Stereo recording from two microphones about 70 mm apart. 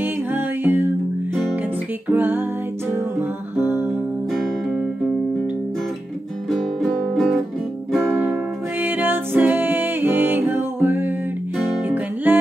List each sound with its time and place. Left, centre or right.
0.0 s music: right
2.0 s music: right
6.5 s music: centre
8.8 s music: right
12.3 s music: right